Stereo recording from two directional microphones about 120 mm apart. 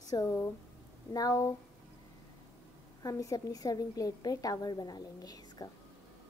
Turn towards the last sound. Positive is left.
turn(degrees=30)  # may be behind; listen again after turning